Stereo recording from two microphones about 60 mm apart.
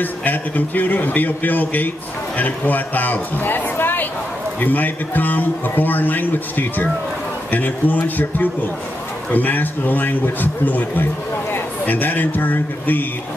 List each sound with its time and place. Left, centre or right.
0.0 s a man's voice: left